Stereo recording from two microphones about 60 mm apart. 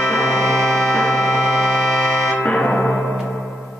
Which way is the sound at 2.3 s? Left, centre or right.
Left.